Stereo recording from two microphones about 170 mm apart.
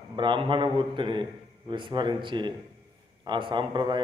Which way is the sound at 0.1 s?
30° right (ahead or behind).